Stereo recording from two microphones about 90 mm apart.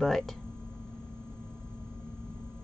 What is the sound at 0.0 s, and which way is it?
Speech, 5° left (ahead or behind).